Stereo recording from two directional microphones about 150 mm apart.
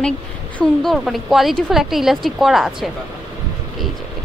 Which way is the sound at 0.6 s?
Centre (ahead or behind).